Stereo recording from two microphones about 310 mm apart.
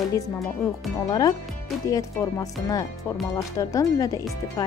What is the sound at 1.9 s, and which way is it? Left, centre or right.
Speech, centre.